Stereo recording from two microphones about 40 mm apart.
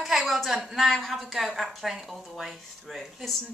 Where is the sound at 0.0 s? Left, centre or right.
Centre.